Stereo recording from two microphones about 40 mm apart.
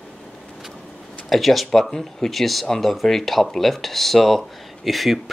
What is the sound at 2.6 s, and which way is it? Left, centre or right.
Speech, centre.